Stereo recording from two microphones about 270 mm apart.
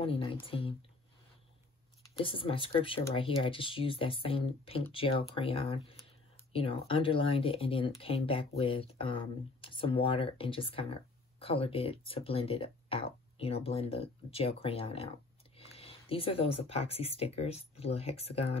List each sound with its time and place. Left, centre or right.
0.0 s speech: centre
2.1 s speech: centre